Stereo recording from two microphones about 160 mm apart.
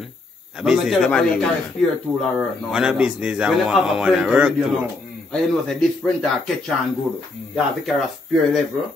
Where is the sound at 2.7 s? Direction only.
5° right (ahead or behind).